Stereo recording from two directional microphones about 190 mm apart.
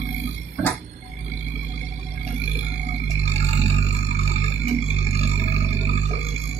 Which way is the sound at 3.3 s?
35° right (ahead or behind).